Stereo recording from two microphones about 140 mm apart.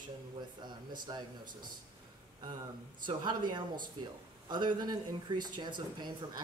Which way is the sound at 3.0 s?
35° right (ahead or behind).